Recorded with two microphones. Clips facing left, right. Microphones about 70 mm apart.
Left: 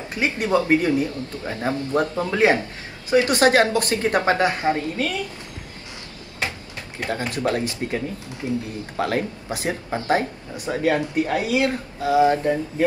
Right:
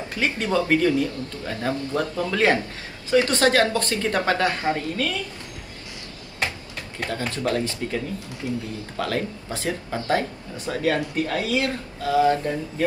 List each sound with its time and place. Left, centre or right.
0.1 s speech: left
7.1 s speech: left